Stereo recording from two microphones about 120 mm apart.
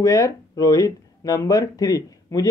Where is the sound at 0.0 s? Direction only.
25° left (ahead or behind).